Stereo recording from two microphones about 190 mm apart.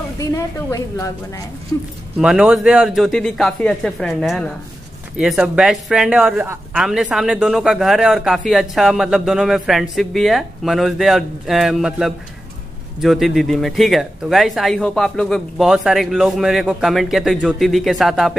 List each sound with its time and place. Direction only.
0.2 s a woman's voice: 15° left (ahead or behind)
2.1 s a man's voice: centre (ahead or behind)
6.8 s speech: centre (ahead or behind)